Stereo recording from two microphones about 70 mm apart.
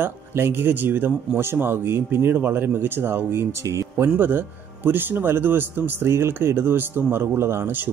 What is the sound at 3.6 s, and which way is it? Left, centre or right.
Speech, right.